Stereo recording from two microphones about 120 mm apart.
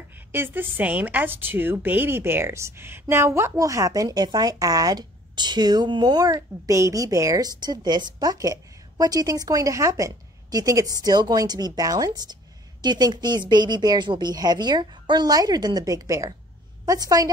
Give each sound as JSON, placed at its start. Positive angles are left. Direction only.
{"t": 0.1, "sound": "speech", "side_deg": -15}